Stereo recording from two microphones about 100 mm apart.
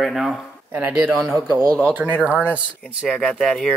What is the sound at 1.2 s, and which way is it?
Speech, 35° right (ahead or behind).